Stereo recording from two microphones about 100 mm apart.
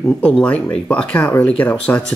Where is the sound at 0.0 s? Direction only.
10° left (ahead or behind).